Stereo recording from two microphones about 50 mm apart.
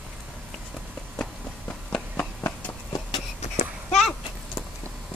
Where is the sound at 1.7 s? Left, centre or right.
Left.